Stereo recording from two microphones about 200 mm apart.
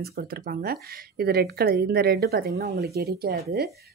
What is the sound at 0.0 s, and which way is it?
Speech, 50° right (ahead or behind).